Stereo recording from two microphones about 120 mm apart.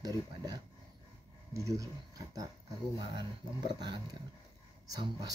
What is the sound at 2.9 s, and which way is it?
Speech, 40° right (ahead or behind).